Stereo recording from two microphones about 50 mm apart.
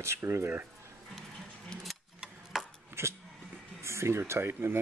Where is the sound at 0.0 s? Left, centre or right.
Right.